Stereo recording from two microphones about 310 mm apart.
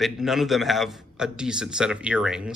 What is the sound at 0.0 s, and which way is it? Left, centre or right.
A man's voice, centre.